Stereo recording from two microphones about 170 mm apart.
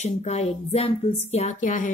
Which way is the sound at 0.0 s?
40° left (ahead or behind).